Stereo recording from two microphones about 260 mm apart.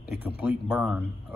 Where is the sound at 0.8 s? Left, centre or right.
Centre.